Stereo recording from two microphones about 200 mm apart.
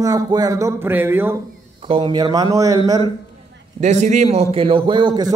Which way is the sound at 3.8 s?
35° right (ahead or behind).